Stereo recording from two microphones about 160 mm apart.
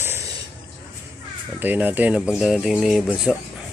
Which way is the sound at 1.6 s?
10° right (ahead or behind).